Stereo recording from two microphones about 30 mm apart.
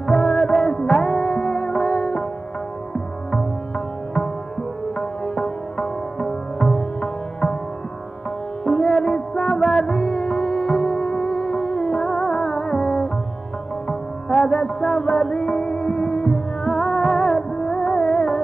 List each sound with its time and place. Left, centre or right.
0.0 s music: left
8.6 s music: left